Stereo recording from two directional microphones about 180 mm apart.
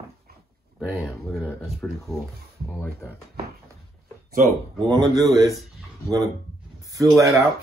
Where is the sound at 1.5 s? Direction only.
Centre (ahead or behind).